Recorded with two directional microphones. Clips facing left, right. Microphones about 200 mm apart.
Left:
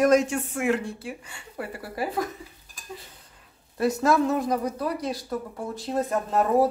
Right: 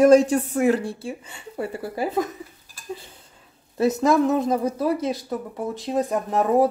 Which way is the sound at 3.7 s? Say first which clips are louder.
Right 3 dB; 20° right (ahead or behind).